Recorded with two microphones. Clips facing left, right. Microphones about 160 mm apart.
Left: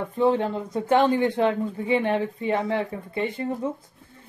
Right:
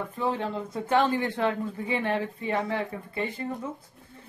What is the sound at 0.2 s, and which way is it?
Speech, 30° left (ahead or behind).